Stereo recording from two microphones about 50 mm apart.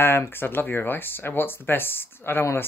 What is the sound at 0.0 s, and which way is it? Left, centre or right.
Speech, left.